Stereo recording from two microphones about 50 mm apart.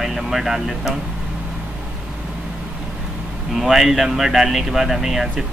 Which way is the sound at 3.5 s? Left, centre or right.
Centre.